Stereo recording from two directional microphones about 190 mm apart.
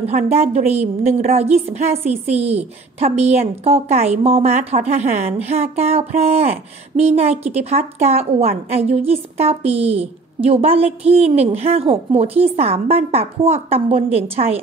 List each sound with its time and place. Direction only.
0.0 s a woman's voice: 35° right (ahead or behind)